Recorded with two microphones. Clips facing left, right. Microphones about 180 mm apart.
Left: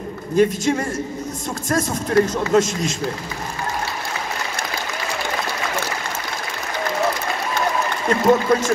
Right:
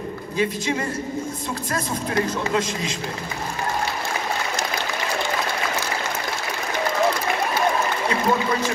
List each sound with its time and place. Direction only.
0.4 s speech: 45° left (ahead or behind)
8.1 s speech: 45° left (ahead or behind)